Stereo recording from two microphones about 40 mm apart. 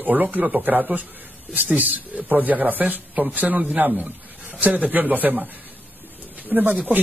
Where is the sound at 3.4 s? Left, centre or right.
Right.